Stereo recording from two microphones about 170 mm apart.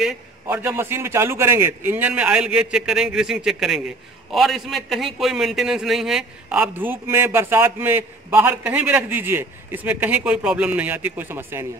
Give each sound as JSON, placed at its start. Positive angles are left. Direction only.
{"t": 0.0, "sound": "a man's voice", "side_deg": -5}